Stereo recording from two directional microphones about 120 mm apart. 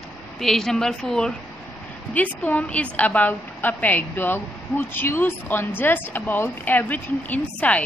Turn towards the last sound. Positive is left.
turn(degrees=10)  # may be behind; listen again after turning